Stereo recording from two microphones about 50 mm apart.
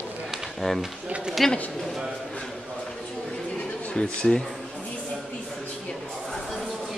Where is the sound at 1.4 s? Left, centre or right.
Centre.